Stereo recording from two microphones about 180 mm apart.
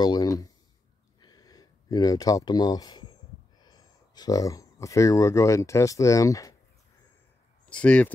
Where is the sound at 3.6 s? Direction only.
20° left (ahead or behind).